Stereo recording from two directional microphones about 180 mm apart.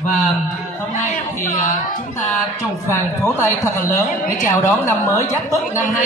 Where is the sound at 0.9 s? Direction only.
45° left (ahead or behind).